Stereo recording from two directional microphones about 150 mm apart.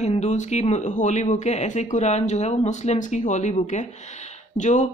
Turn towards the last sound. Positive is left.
turn(degrees=55)  # may be behind; listen again after turning